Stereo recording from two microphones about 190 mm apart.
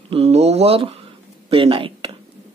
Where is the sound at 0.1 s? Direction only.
30° right (ahead or behind).